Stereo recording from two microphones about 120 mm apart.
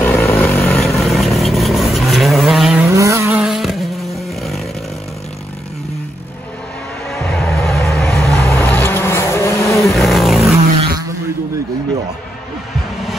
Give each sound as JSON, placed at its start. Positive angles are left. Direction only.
{"t": 0.0, "sound": "vehicle", "side_deg": 15}
{"t": 0.8, "sound": "vehicle", "side_deg": 0}
{"t": 2.8, "sound": "vehicle", "side_deg": -25}
{"t": 3.3, "sound": "vehicle", "side_deg": -5}
{"t": 7.1, "sound": "music", "side_deg": 0}
{"t": 8.4, "sound": "vehicle", "side_deg": 20}
{"t": 9.9, "sound": "vehicle", "side_deg": 0}